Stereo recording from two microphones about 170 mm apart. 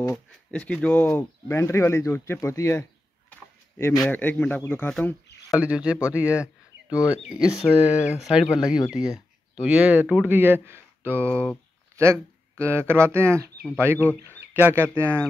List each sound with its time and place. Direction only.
0.1 s speech: 5° left (ahead or behind)
5.6 s speech: 5° right (ahead or behind)
8.5 s speech: 20° left (ahead or behind)
8.9 s speech: 5° right (ahead or behind)